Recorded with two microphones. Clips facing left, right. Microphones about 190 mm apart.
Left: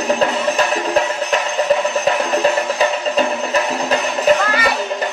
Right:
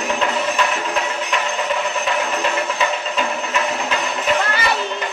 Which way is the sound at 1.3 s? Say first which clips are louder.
Left 6 dB; 40° left (ahead or behind).